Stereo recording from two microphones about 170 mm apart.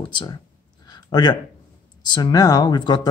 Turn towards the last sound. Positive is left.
turn(degrees=25)  # may be behind; listen again after turning